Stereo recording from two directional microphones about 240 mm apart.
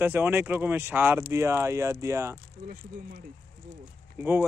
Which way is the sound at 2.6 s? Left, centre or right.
Right.